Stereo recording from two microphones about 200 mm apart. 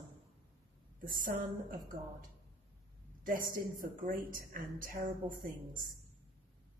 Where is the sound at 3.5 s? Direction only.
45° right (ahead or behind).